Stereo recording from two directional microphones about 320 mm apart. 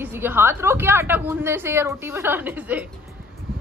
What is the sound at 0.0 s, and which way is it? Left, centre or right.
A woman's voice, centre.